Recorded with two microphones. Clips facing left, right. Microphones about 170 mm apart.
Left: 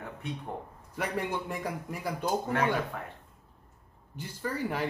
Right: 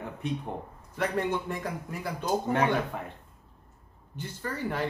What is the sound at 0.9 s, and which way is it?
A man's voice, 10° left (ahead or behind).